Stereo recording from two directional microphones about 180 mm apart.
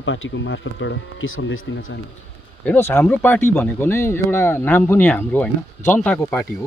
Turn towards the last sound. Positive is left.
turn(degrees=10)  # may be behind; listen again after turning